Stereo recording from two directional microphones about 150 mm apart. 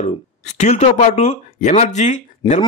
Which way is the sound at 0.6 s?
50° left (ahead or behind).